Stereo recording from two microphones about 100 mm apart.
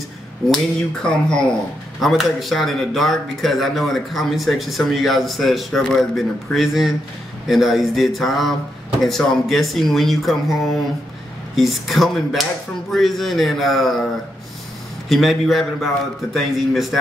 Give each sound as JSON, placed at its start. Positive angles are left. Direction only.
{"t": 0.5, "sound": "speech", "side_deg": 5}
{"t": 15.0, "sound": "speech", "side_deg": 0}